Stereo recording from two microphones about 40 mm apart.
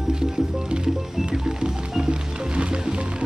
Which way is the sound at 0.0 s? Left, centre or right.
Centre.